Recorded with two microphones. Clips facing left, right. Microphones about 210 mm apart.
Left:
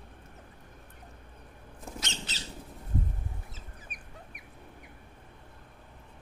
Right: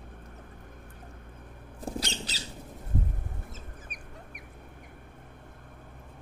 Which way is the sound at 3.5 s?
50° right (ahead or behind).